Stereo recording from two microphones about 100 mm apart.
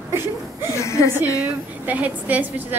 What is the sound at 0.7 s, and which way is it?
Chuckle, 30° left (ahead or behind).